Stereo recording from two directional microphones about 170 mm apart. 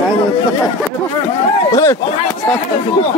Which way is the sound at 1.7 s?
20° left (ahead or behind).